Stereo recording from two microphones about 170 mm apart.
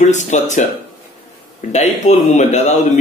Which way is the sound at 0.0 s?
45° left (ahead or behind).